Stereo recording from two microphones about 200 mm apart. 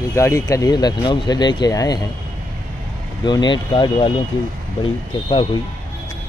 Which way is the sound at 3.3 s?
20° left (ahead or behind).